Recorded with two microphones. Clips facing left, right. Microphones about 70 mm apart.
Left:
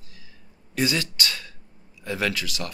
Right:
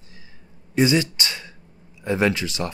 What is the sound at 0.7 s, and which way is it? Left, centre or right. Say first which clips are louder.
Speech: right 6 dB; right.